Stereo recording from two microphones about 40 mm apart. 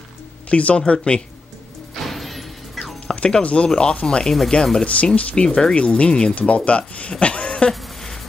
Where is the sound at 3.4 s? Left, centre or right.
Left.